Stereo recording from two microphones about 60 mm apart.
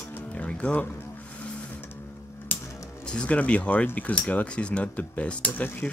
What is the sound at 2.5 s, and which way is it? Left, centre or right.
Music, left.